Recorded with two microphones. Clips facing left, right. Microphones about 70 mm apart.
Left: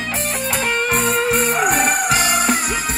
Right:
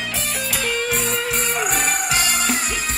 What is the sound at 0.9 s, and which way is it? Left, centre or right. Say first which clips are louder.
Music: left 5 dB; left.